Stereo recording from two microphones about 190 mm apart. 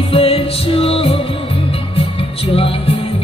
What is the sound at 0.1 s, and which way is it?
Music, 30° left (ahead or behind).